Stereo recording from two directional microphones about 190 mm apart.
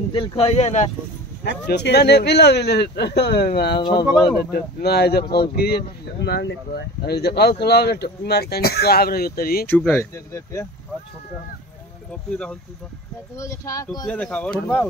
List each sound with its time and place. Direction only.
0.1 s speech: 25° left (ahead or behind)
1.4 s speech: 60° left (ahead or behind)
9.7 s speech: 5° left (ahead or behind)
12.1 s speech: 5° left (ahead or behind)
13.4 s speech: 15° left (ahead or behind)